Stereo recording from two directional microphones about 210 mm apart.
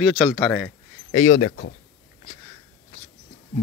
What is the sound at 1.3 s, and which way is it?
Speech, 55° left (ahead or behind).